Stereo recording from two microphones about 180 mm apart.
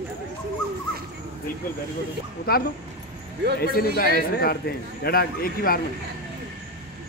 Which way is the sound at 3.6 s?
55° left (ahead or behind).